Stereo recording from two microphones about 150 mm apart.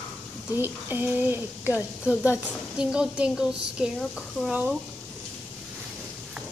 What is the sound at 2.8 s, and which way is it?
Speech, 5° right (ahead or behind).